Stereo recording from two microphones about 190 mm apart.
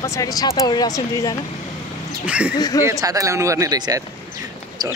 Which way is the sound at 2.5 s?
20° left (ahead or behind).